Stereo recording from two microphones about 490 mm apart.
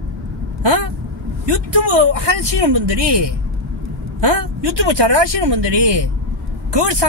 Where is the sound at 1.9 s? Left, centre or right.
Right.